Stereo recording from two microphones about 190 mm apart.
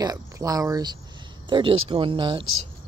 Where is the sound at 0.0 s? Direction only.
20° right (ahead or behind).